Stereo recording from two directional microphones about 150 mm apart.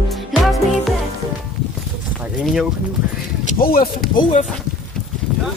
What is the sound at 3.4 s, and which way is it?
Speech, 75° left (ahead or behind).